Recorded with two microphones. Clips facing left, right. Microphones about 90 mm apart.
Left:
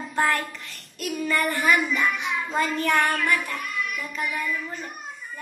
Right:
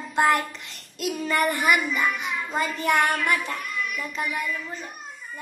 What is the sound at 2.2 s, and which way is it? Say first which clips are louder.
Child singing: left 2 dB; 5° right (ahead or behind).